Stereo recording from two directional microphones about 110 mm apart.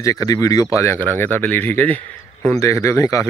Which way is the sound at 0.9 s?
15° left (ahead or behind).